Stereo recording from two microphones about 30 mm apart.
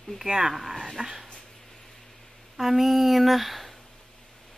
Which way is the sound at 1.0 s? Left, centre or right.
Centre.